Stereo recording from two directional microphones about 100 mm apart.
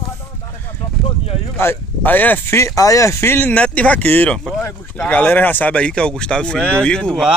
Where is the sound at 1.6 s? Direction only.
20° left (ahead or behind).